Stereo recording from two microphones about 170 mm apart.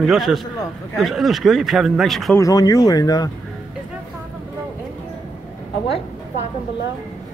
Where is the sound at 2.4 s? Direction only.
20° left (ahead or behind).